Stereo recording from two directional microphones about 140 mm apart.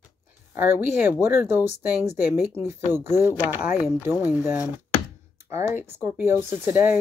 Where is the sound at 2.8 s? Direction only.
15° right (ahead or behind).